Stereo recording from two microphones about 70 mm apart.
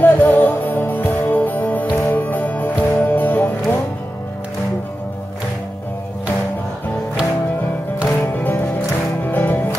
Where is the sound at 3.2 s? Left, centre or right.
Left.